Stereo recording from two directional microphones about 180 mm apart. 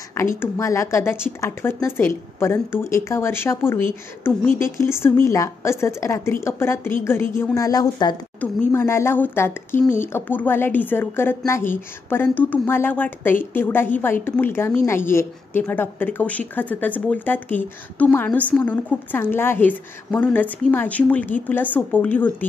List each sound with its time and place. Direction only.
0.4 s a woman's voice: 15° left (ahead or behind)